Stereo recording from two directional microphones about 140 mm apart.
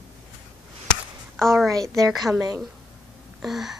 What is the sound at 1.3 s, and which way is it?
Speech, centre (ahead or behind).